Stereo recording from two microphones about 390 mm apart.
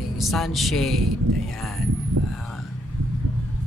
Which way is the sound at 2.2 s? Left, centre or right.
Right.